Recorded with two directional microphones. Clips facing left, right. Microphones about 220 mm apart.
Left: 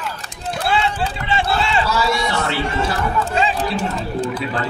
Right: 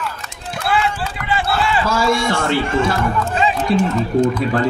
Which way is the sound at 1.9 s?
50° right (ahead or behind).